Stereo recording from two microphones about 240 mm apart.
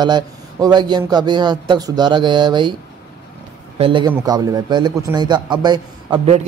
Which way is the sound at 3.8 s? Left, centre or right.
Right.